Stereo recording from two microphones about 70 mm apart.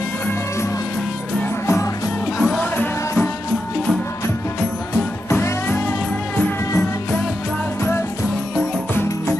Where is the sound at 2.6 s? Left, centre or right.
Left.